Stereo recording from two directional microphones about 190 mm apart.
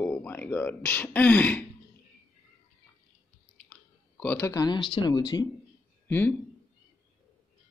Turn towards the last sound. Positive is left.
turn(degrees=10)  # may be behind; listen again after turning